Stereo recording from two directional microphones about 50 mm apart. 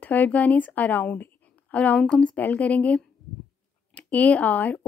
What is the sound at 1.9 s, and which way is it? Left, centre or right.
A woman's voice, left.